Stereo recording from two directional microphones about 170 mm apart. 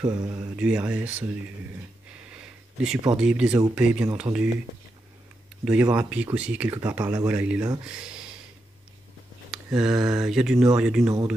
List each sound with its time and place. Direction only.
0.0 s speech: 20° right (ahead or behind)
0.6 s speech: 5° right (ahead or behind)
2.0 s a sound: 5° right (ahead or behind)
3.2 s speech: 5° right (ahead or behind)
5.7 s speech: 5° right (ahead or behind)
9.5 s a sound: 5° right (ahead or behind)
10.0 s speech: 5° right (ahead or behind)